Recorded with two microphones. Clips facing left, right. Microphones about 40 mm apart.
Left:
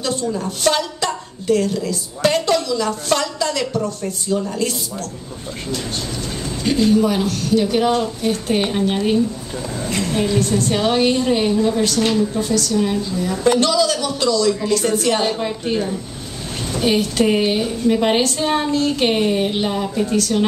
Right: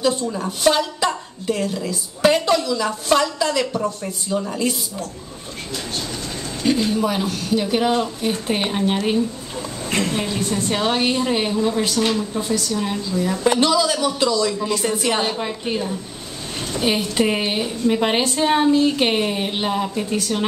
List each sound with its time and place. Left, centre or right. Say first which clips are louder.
0.0 s a woman's voice: right 1 dB; centre
6.6 s a woman's voice: left 3 dB; centre
10.0 s a woman's voice: left 4 dB; centre
12.4 s a woman's voice: left 3 dB; right
12.7 s a woman's voice: left 3 dB; centre
16.7 s a woman's voice: left 3 dB; centre